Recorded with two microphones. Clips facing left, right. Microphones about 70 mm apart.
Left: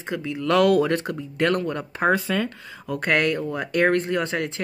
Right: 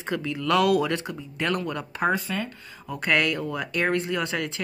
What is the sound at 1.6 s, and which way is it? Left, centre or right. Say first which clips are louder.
Speech: left 3 dB; left.